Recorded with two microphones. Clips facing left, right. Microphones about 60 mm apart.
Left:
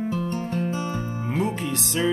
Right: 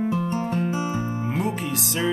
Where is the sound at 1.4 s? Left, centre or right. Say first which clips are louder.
Left 3 dB; centre.